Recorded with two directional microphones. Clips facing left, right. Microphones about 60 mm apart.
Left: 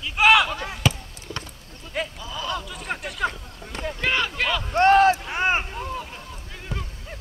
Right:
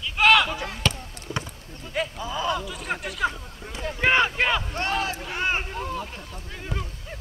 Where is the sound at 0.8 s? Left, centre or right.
Centre.